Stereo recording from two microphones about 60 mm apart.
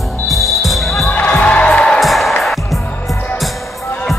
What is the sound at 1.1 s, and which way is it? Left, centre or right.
Music, centre.